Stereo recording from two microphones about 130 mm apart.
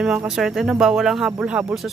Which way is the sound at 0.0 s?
5° right (ahead or behind).